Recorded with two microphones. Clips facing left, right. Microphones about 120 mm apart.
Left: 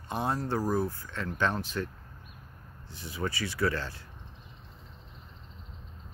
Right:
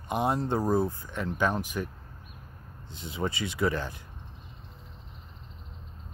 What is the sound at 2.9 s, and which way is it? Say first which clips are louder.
Speech: right 2 dB; 20° right (ahead or behind).